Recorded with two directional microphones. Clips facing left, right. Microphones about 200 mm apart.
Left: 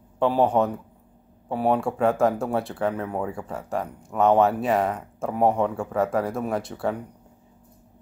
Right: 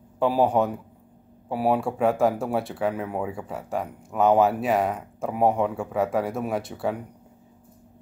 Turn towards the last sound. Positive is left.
turn(degrees=0)  # may be behind; listen again after turning